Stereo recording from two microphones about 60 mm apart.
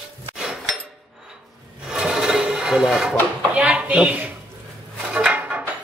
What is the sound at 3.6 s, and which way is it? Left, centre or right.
Speech, right.